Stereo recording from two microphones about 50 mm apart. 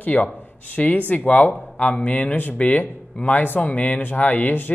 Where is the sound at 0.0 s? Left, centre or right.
Left.